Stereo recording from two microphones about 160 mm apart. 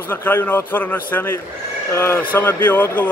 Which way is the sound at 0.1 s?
10° left (ahead or behind).